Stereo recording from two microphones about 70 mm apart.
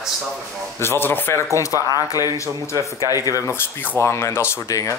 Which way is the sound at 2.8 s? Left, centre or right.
Right.